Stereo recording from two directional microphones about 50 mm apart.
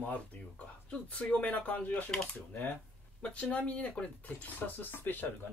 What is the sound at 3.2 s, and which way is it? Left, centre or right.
Speech, left.